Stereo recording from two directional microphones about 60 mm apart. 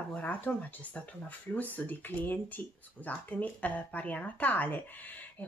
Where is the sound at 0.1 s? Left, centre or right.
Left.